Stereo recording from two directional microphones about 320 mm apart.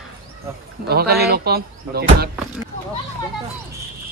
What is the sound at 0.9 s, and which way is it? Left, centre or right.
Speech, right.